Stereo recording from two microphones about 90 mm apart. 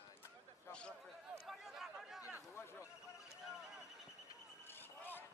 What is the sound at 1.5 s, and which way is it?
Chatter, 5° right (ahead or behind).